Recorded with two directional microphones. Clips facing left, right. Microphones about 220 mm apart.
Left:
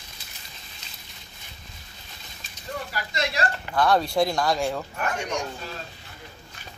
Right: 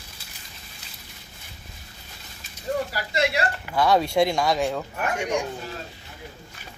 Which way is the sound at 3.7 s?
5° right (ahead or behind).